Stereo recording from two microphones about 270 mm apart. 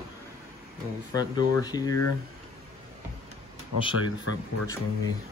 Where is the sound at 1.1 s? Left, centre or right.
Centre.